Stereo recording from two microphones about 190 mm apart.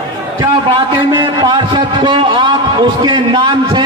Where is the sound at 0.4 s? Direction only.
25° right (ahead or behind).